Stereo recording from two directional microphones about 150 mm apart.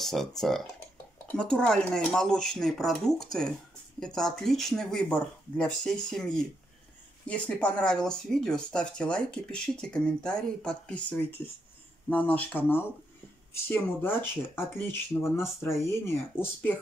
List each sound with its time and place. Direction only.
0.0 s speech: centre (ahead or behind)
1.3 s speech: 5° left (ahead or behind)